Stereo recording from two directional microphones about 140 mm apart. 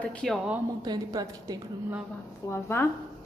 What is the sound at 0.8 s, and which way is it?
Speech, 25° right (ahead or behind).